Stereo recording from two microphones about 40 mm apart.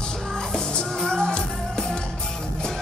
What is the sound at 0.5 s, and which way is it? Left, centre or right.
Music, centre.